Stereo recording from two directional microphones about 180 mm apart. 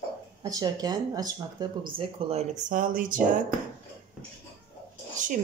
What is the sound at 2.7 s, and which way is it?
Speech, 50° right (ahead or behind).